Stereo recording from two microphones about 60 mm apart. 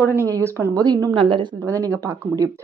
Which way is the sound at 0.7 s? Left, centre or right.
Right.